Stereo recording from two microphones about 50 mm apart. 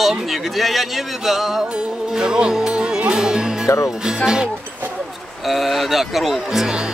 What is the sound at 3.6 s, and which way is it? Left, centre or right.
Speech, left.